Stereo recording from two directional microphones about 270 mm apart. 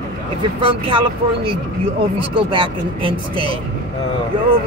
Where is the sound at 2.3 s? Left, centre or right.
Centre.